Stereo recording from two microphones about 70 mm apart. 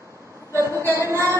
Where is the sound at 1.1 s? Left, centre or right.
Right.